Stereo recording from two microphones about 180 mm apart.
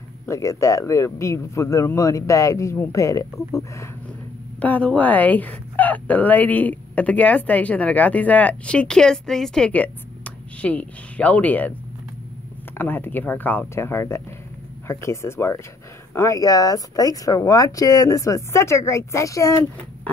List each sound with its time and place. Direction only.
0.3 s speech: 15° left (ahead or behind)
12.7 s speech: 10° left (ahead or behind)